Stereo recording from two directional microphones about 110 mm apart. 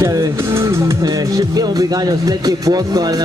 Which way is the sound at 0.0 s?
25° right (ahead or behind).